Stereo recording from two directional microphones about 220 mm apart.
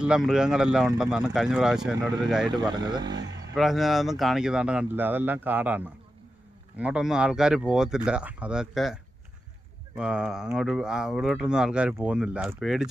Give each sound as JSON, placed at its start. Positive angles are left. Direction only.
{"t": 0.0, "sound": "speech", "side_deg": -5}
{"t": 2.5, "sound": "speech", "side_deg": -20}
{"t": 3.1, "sound": "a man's voice", "side_deg": -55}
{"t": 3.5, "sound": "speech", "side_deg": 0}